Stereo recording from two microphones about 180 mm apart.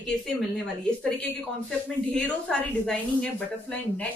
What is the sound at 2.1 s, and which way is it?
A woman's voice, 5° left (ahead or behind).